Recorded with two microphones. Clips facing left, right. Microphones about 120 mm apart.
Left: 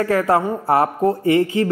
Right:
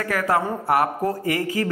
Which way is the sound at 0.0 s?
30° left (ahead or behind).